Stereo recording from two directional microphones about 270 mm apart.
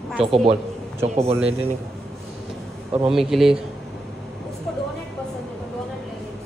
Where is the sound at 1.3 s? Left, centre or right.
Centre.